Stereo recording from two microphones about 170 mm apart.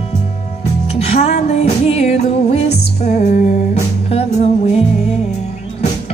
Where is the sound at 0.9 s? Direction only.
40° left (ahead or behind).